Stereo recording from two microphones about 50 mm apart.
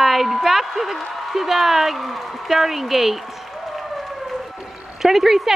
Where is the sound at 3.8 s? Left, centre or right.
Centre.